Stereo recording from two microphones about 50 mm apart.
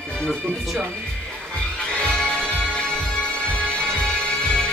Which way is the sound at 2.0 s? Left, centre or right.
Left.